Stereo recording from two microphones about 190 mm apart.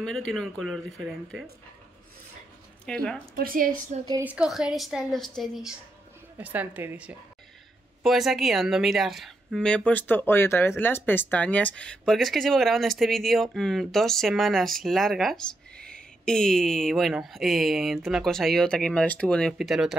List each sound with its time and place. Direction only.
0.0 s speech: centre (ahead or behind)
2.8 s speech: 5° left (ahead or behind)
3.3 s a woman's voice: 50° right (ahead or behind)
4.2 s a woman's voice: 5° right (ahead or behind)